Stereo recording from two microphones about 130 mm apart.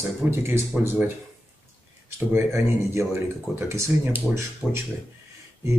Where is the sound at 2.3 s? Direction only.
20° right (ahead or behind).